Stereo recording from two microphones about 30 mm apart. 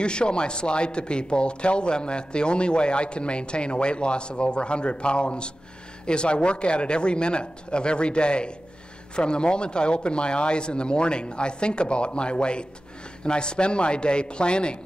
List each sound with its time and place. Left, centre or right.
0.0 s speech: left